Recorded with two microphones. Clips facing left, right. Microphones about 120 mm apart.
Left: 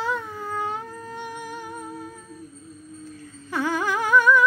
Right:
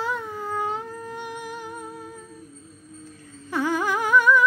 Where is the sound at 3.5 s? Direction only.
15° right (ahead or behind).